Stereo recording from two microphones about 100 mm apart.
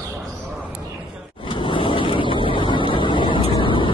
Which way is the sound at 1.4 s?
55° left (ahead or behind).